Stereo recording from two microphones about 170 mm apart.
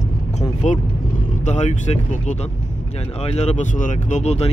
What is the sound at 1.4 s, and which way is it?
Speech, 40° left (ahead or behind).